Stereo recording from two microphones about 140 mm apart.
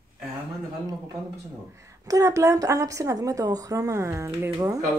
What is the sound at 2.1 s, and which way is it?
Speech, 25° right (ahead or behind).